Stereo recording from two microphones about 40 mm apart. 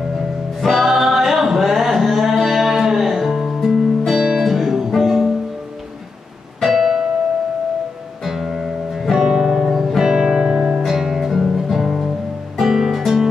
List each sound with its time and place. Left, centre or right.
0.6 s music: centre
6.6 s music: centre
8.2 s music: centre
9.3 s music: centre
9.7 s music: centre
10.1 s music: centre